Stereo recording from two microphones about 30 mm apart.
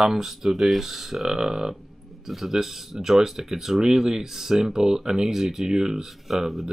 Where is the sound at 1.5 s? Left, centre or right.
Centre.